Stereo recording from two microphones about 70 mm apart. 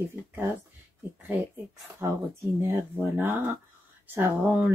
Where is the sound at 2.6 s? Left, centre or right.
Right.